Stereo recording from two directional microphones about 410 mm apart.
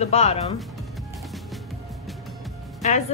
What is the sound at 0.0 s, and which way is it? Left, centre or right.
Speech, centre.